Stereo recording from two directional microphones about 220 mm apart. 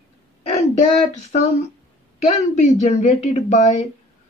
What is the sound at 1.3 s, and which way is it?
Speech, 30° left (ahead or behind).